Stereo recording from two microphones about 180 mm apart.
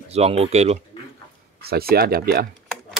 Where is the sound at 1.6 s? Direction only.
60° right (ahead or behind).